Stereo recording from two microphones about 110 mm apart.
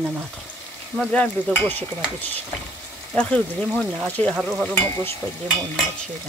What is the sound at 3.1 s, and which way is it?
Stir, 10° left (ahead or behind).